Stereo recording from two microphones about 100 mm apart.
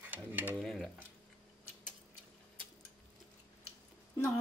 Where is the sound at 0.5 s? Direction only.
Centre (ahead or behind).